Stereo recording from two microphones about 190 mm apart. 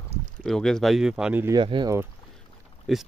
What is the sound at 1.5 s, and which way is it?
Speech, 25° right (ahead or behind).